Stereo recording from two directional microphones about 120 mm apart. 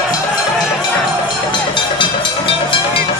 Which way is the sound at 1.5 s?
40° left (ahead or behind).